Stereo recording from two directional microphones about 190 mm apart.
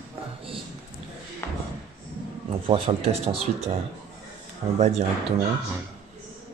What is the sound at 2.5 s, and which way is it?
Speech, 30° right (ahead or behind).